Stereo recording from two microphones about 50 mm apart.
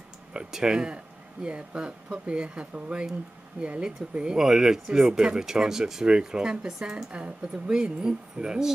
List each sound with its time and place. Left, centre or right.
0.3 s speech: centre